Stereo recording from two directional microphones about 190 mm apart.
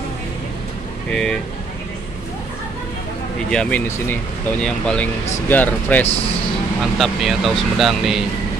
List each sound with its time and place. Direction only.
1.1 s speech: 5° left (ahead or behind)
3.4 s speech: 5° left (ahead or behind)